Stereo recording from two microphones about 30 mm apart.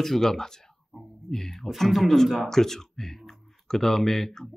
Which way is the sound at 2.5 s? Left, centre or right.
Centre.